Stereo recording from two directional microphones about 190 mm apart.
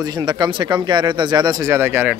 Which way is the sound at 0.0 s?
20° right (ahead or behind).